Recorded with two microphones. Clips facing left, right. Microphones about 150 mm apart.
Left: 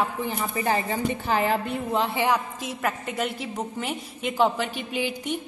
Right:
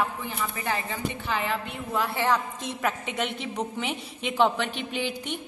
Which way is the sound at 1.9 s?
25° left (ahead or behind).